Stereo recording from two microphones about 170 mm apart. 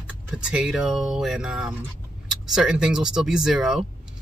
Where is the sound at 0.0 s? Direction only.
5° right (ahead or behind).